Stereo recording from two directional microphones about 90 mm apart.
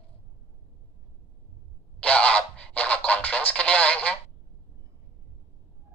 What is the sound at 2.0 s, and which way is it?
Music, 15° left (ahead or behind).